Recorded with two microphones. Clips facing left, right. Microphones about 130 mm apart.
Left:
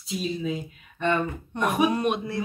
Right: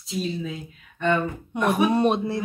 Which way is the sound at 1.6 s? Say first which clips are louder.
Right 3 dB; 30° right (ahead or behind).